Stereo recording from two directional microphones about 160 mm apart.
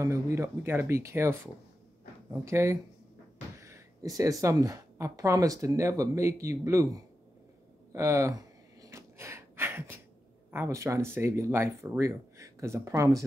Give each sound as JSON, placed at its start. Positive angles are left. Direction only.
{"t": 0.0, "sound": "speech", "side_deg": -20}
{"t": 7.9, "sound": "gasp", "side_deg": -15}
{"t": 10.5, "sound": "speech", "side_deg": -15}